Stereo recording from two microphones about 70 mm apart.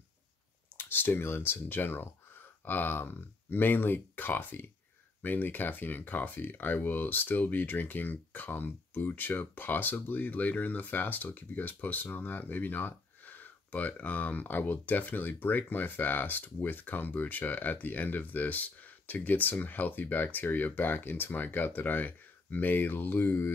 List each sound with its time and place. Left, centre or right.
0.7 s speech: left